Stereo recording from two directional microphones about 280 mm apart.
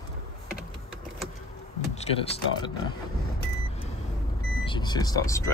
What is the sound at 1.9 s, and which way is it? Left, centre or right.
Speech, left.